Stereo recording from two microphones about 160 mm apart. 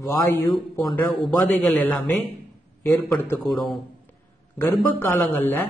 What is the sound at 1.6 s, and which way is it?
A man's voice, 5° left (ahead or behind).